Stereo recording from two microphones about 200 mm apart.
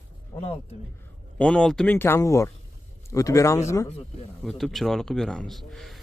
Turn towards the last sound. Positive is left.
turn(degrees=0)  # may be behind; listen again after turning